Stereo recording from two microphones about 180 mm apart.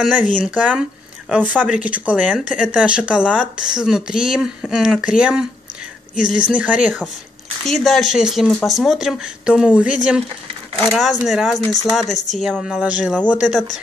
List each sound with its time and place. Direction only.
0.0 s speech: 5° right (ahead or behind)
6.1 s speech: 50° left (ahead or behind)
6.4 s speech: 10° right (ahead or behind)